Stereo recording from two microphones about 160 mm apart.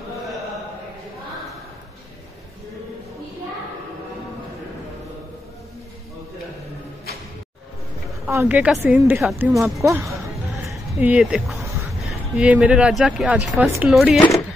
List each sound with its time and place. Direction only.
8.3 s a woman's voice: 15° right (ahead or behind)
9.5 s speech: centre (ahead or behind)
9.8 s speech: 20° right (ahead or behind)
10.3 s music: centre (ahead or behind)
11.0 s speech: 10° right (ahead or behind)